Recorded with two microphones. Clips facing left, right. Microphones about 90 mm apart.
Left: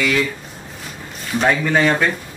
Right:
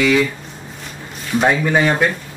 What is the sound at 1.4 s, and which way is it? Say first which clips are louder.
Speech: right 1 dB; 15° right (ahead or behind).